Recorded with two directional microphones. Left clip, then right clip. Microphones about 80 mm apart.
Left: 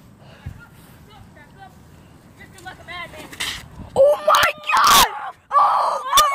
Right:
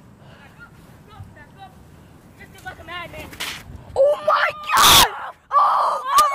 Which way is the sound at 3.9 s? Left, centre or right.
Centre.